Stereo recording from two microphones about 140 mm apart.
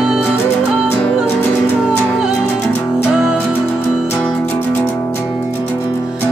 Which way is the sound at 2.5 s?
10° left (ahead or behind).